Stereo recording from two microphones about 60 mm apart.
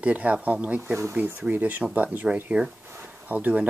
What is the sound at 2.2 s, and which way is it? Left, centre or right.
Speech, centre.